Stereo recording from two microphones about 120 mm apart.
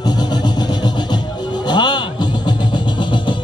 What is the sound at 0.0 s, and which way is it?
Music, 35° left (ahead or behind).